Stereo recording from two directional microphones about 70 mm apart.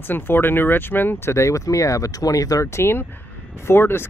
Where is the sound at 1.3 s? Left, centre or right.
Left.